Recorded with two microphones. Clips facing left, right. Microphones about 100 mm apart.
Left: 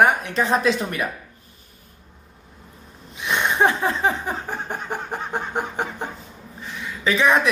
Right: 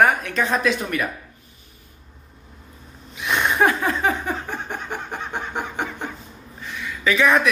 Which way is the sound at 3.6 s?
25° left (ahead or behind).